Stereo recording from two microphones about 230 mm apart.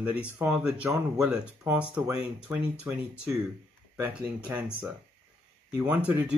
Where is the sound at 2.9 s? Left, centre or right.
Centre.